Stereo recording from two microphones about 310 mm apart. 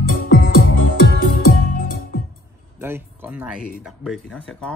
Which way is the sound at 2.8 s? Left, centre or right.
Centre.